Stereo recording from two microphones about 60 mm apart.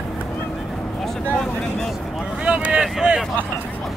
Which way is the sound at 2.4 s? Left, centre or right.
Right.